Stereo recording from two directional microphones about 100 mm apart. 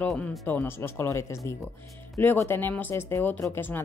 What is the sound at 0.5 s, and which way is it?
Speech, 20° left (ahead or behind).